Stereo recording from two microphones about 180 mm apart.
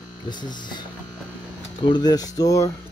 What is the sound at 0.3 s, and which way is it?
Speech, 25° left (ahead or behind).